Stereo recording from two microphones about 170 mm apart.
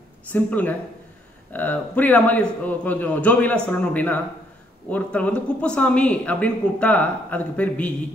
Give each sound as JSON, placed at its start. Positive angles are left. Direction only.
{"t": 0.3, "sound": "speech", "side_deg": 10}